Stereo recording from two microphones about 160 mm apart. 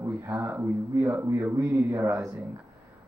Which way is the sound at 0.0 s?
15° right (ahead or behind).